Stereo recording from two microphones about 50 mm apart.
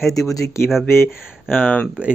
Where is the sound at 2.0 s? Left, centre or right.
Right.